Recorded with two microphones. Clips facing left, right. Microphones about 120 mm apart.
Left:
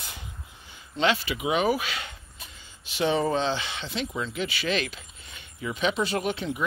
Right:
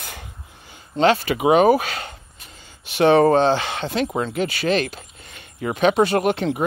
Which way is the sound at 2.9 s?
65° right (ahead or behind).